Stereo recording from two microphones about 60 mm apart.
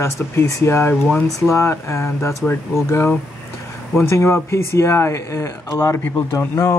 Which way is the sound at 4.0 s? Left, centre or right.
Left.